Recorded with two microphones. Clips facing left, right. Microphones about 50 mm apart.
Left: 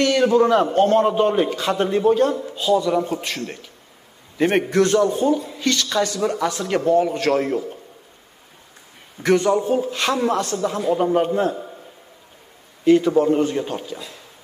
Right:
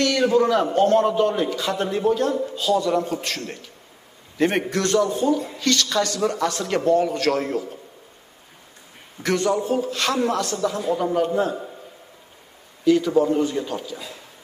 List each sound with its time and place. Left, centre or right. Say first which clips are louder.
0.2 s a man's voice: left 2 dB; centre
2.5 s speech: left 2 dB; centre
4.4 s speech: left 4 dB; left
9.2 s a man's voice: left 4 dB; centre
12.9 s a man's voice: left 3 dB; left